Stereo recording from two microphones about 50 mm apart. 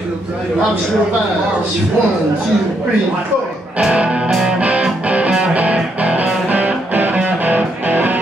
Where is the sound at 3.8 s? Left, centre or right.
Right.